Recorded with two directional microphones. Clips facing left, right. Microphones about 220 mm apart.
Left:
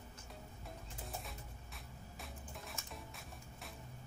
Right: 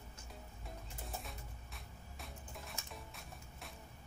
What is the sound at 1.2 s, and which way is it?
Music, centre (ahead or behind).